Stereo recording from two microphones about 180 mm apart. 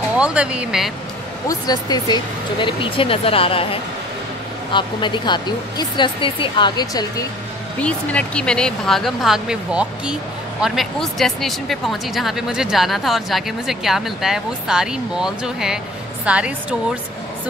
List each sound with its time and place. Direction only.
0.2 s speech: 5° right (ahead or behind)
1.5 s speech: 20° left (ahead or behind)
7.8 s a woman's voice: 5° left (ahead or behind)